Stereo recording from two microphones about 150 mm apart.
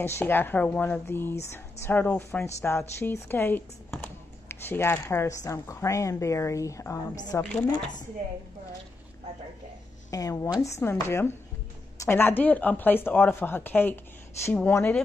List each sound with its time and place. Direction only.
0.0 s speech: 15° left (ahead or behind)
10.1 s speech: 20° left (ahead or behind)